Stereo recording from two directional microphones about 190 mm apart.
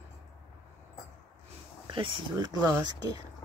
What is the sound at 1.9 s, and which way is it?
Speech, 25° right (ahead or behind).